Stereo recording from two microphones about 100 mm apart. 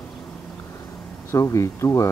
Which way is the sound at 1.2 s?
30° left (ahead or behind).